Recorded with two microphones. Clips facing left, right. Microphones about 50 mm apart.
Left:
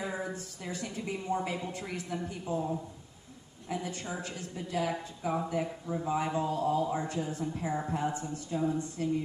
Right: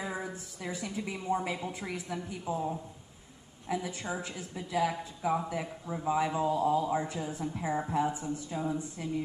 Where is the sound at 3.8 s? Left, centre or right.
Right.